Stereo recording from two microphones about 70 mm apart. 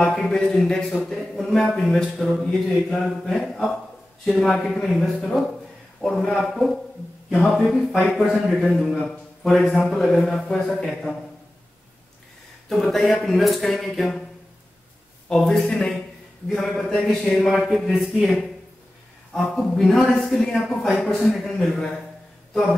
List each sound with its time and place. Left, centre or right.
0.0 s a man's voice: centre
12.6 s a man's voice: centre
15.2 s a man's voice: centre
22.5 s a sound: centre